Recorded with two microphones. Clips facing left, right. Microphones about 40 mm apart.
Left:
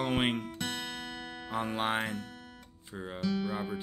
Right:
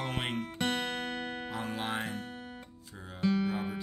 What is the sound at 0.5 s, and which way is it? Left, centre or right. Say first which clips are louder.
Music: right 5 dB; right.